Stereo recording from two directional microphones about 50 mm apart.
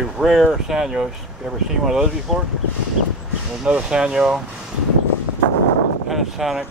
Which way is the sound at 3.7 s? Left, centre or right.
Centre.